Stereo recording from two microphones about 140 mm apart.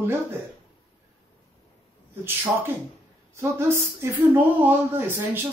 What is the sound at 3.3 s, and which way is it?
Speech, 20° right (ahead or behind).